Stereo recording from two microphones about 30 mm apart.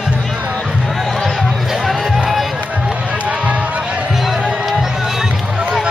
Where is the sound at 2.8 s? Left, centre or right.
Right.